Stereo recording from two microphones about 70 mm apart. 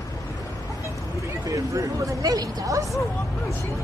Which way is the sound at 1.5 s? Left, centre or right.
Right.